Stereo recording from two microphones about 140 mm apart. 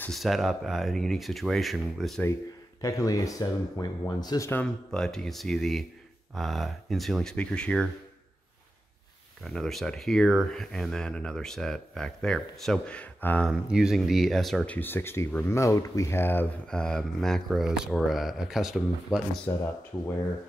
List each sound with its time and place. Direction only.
0.1 s speech: centre (ahead or behind)
2.8 s speech: 25° left (ahead or behind)
4.5 s speech: 10° left (ahead or behind)
9.4 s speech: centre (ahead or behind)
13.5 s speech: 5° right (ahead or behind); by 16.4 s 15° left (ahead or behind)
16.6 s speech: 5° left (ahead or behind)
19.5 s speech: 20° left (ahead or behind)